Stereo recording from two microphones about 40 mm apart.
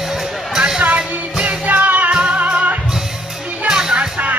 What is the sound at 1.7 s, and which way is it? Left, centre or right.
Music, right.